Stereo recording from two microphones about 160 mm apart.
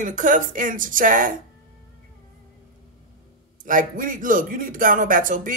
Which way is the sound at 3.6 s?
55° right (ahead or behind).